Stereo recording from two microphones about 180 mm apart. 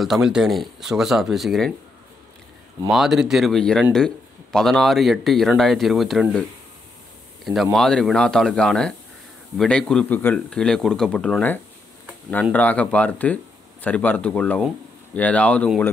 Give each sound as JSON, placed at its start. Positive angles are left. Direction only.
{"t": 0.0, "sound": "a man's voice", "side_deg": 0}
{"t": 2.9, "sound": "a man's voice", "side_deg": 0}
{"t": 7.7, "sound": "a man's voice", "side_deg": 5}